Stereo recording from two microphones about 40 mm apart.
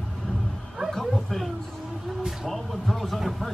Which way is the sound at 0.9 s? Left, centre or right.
Centre.